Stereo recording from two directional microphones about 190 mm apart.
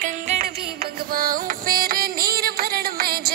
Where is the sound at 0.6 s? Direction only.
55° right (ahead or behind).